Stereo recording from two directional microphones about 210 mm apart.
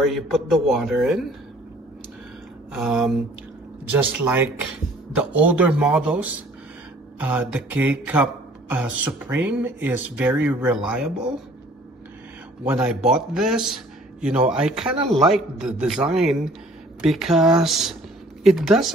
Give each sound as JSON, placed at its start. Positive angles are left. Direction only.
{"t": 0.0, "sound": "speech", "side_deg": 0}
{"t": 2.7, "sound": "speech", "side_deg": 0}
{"t": 4.2, "sound": "speech", "side_deg": -10}
{"t": 12.6, "sound": "speech", "side_deg": -5}